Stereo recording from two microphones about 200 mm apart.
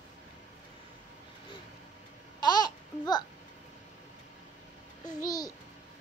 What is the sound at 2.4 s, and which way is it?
Babbling, 20° left (ahead or behind).